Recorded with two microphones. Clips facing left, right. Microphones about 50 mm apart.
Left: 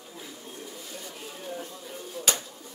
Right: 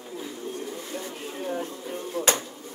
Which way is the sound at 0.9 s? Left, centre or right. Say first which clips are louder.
Right 6 dB; right.